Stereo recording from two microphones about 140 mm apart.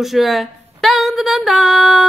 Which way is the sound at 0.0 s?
Centre (ahead or behind).